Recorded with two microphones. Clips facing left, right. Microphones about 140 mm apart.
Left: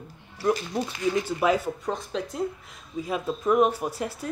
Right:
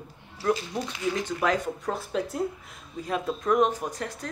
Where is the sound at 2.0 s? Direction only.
5° right (ahead or behind).